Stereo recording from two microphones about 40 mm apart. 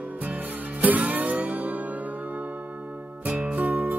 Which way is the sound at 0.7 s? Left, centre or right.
Right.